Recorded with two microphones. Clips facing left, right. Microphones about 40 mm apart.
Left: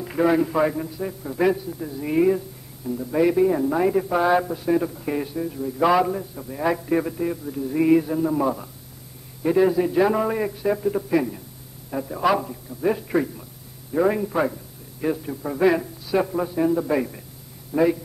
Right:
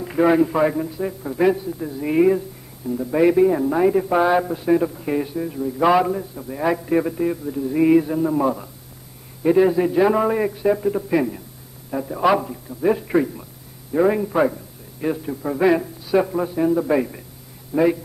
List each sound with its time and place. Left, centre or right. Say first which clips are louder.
0.0 s a man's voice: right 3 dB; centre